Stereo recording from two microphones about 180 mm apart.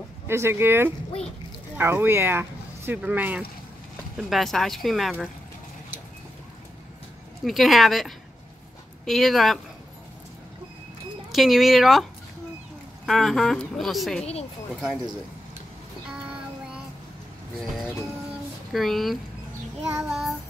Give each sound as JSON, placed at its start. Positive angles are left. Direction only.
{"t": 0.3, "sound": "a woman's voice", "side_deg": -15}
{"t": 7.4, "sound": "a woman's voice", "side_deg": 0}
{"t": 11.3, "sound": "a woman's voice", "side_deg": 0}
{"t": 18.7, "sound": "a woman's voice", "side_deg": 0}
{"t": 20.0, "sound": "child singing", "side_deg": 0}